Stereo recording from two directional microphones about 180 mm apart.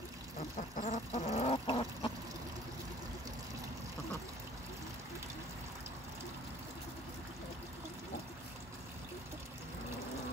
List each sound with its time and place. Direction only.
0.6 s chicken: 40° left (ahead or behind)